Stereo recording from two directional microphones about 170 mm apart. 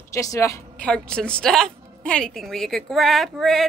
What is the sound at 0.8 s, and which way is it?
A woman's voice, 5° left (ahead or behind).